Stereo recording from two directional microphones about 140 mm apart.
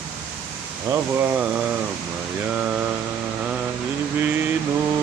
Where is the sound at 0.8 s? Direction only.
15° right (ahead or behind).